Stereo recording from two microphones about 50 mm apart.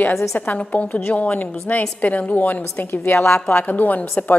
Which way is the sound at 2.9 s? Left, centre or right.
Left.